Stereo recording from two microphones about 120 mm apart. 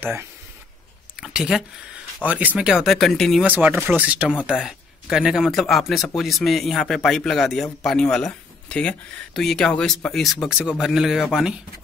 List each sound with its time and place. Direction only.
0.0 s speech: 20° right (ahead or behind)
1.2 s speech: 5° right (ahead or behind)
3.4 s speech: 15° right (ahead or behind)